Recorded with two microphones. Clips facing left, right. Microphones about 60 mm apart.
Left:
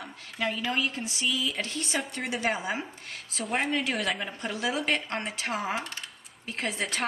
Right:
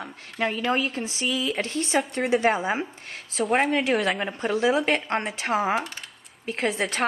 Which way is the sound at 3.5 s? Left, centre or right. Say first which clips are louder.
Right 6 dB; right.